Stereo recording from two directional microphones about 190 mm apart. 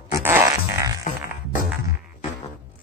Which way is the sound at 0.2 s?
10° right (ahead or behind).